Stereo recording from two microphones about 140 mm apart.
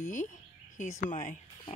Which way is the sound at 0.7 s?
65° left (ahead or behind).